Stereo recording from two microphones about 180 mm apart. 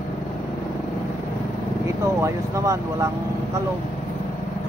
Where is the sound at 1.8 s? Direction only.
15° right (ahead or behind).